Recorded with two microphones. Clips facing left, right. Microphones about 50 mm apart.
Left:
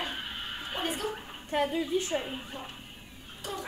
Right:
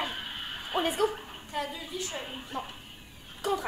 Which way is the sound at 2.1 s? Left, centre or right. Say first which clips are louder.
Left 6 dB; centre.